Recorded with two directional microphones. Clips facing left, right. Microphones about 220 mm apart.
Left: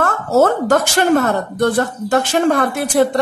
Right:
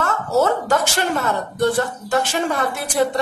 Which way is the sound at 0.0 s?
50° left (ahead or behind).